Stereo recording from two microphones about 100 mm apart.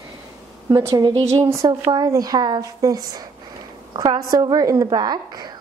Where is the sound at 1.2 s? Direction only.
30° right (ahead or behind).